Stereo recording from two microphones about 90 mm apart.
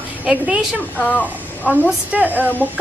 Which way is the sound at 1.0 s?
20° left (ahead or behind).